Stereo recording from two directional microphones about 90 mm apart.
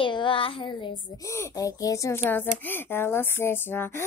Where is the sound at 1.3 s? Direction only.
35° left (ahead or behind).